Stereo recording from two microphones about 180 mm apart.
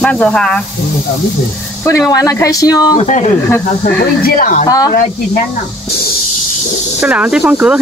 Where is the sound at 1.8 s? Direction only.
15° left (ahead or behind).